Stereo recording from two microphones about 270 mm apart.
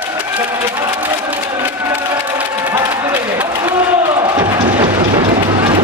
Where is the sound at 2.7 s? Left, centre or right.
Centre.